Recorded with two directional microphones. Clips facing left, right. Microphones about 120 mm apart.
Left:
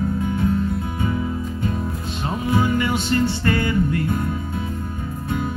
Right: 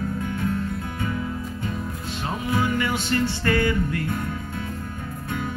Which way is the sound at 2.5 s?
25° left (ahead or behind).